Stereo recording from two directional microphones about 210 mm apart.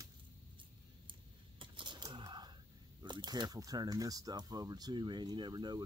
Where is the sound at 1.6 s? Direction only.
25° right (ahead or behind).